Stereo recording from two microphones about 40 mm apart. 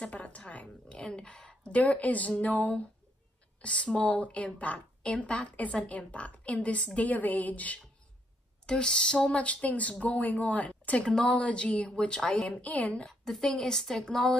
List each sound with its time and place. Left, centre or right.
0.0 s a woman's voice: left
1.0 s speech: centre
1.7 s a woman's voice: left
3.6 s a woman's voice: left
7.0 s speech: left
8.6 s a woman's voice: left
12.4 s a woman's voice: left
13.3 s a woman's voice: centre